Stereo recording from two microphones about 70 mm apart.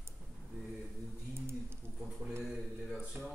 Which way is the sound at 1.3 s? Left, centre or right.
Right.